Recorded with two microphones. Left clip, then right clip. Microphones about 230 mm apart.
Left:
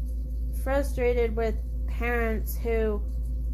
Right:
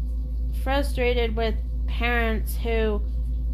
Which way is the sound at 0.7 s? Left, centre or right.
Centre.